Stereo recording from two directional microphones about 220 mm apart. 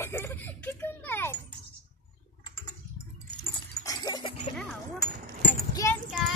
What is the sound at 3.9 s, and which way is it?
Dog, 15° left (ahead or behind).